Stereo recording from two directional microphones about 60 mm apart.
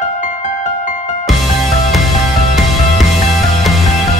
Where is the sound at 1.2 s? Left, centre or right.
Centre.